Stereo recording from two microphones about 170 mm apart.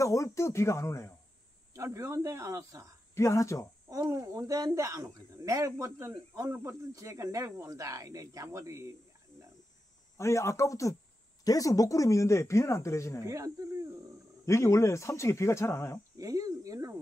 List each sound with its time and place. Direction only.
0.0 s speech: 20° left (ahead or behind)
1.8 s speech: 15° right (ahead or behind)
3.2 s speech: 15° left (ahead or behind)
3.9 s speech: 20° right (ahead or behind)
10.1 s speech: 15° left (ahead or behind)
13.2 s speech: 20° right (ahead or behind)
14.4 s speech: 15° left (ahead or behind)
16.2 s speech: 20° right (ahead or behind)